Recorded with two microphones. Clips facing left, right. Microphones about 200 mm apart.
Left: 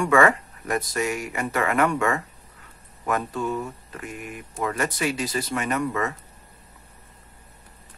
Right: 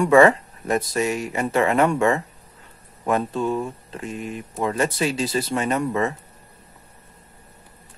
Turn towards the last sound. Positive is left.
turn(degrees=-30)  # may be behind; listen again after turning